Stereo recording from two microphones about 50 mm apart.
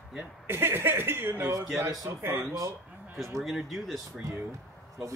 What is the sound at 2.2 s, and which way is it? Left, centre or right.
Speech, right.